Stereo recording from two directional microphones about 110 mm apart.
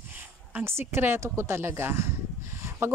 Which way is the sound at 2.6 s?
25° right (ahead or behind).